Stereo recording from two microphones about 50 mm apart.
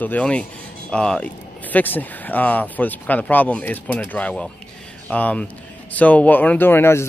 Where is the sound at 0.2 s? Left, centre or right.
Left.